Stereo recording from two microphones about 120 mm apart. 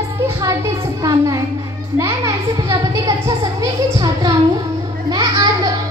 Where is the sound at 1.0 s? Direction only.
30° right (ahead or behind).